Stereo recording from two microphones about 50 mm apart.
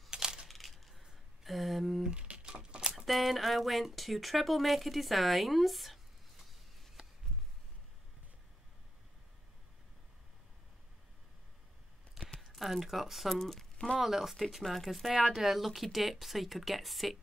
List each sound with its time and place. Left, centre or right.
0.1 s coin: centre
0.5 s coin: centre
1.4 s a sound: centre
2.0 s a sound: right
3.1 s speech: centre
12.4 s speech: centre
13.4 s speech: centre
13.9 s speech: centre